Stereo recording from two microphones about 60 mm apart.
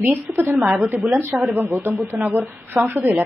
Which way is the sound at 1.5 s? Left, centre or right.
Right.